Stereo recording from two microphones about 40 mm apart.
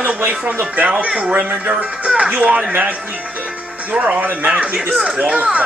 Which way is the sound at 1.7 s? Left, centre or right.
Right.